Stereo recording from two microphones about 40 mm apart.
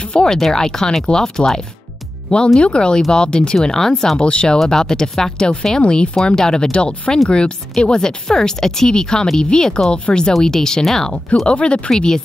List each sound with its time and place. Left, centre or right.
0.1 s speech: centre
2.3 s speech: left; by 4.2 s centre
4.2 s speech: left
4.6 s speech: centre
11.4 s speech: left